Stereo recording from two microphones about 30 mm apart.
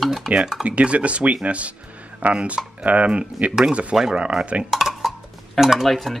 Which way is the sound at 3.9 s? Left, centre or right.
Centre.